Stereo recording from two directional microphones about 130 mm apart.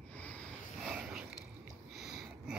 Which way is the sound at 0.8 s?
5° right (ahead or behind).